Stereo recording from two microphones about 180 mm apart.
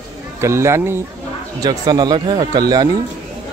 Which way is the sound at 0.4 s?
15° right (ahead or behind).